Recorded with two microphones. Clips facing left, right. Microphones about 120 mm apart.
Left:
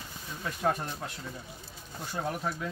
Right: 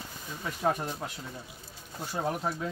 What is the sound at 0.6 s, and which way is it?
Speech, 10° right (ahead or behind).